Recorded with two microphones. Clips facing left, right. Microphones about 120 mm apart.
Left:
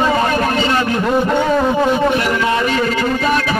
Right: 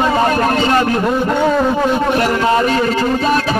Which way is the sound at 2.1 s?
40° right (ahead or behind).